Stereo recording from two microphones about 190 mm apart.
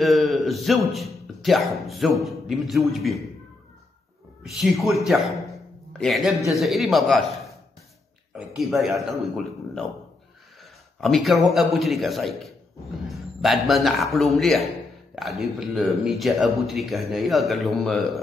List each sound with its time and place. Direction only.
0.0 s speech: centre (ahead or behind)
4.4 s speech: centre (ahead or behind)
8.4 s a man's voice: centre (ahead or behind)